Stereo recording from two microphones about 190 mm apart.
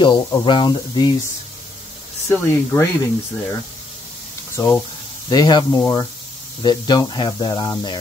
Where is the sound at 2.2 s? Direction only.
15° left (ahead or behind).